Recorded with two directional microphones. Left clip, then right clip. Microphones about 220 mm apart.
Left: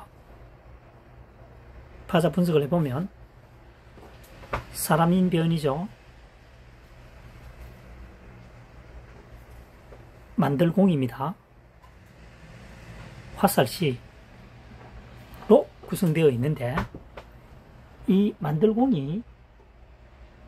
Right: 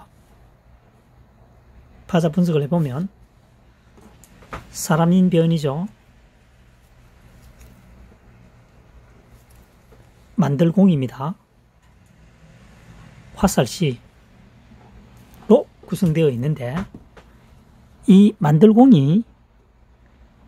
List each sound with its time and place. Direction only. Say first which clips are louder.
2.0 s speech: right 3 dB; 45° right (ahead or behind)
4.7 s speech: right 4 dB; 45° right (ahead or behind)
10.3 s speech: right 4 dB; 45° right (ahead or behind)
13.4 s speech: right 2 dB; 45° right (ahead or behind)
15.4 s speech: right 3 dB; 45° right (ahead or behind)
18.0 s speech: right 9 dB; 50° right (ahead or behind)